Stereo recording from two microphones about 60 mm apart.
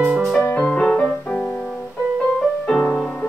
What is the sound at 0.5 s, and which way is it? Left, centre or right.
Music, left.